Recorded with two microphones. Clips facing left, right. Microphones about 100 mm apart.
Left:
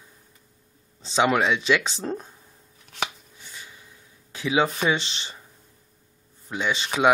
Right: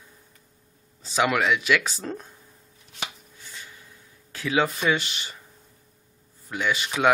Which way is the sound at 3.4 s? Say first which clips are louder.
Even; 20° left (ahead or behind).